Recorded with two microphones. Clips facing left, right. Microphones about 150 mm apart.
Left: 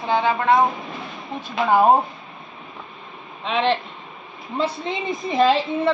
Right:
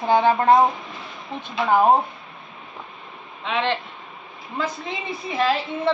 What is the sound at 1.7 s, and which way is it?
Speech, 10° left (ahead or behind).